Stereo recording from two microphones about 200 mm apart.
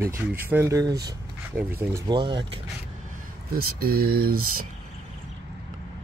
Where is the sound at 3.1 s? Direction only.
50° right (ahead or behind).